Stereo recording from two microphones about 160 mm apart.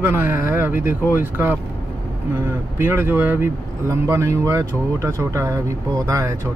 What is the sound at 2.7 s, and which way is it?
Speech, 15° right (ahead or behind).